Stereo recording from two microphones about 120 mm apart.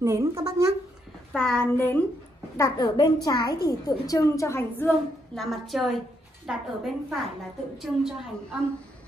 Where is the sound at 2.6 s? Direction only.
30° left (ahead or behind).